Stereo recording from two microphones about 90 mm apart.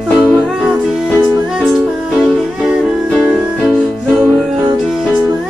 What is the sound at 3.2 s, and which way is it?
Music, 15° right (ahead or behind).